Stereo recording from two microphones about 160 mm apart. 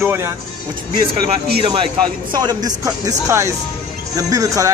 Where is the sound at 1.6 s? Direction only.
35° right (ahead or behind).